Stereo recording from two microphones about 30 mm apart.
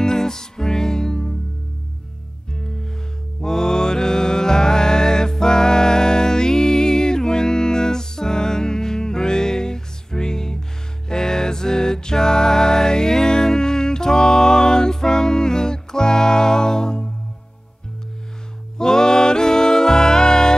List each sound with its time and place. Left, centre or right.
0.0 s music: centre
3.3 s music: left
18.8 s music: left